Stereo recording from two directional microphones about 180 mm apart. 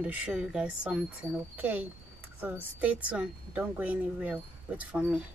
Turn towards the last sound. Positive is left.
turn(degrees=-5)  # may be behind; listen again after turning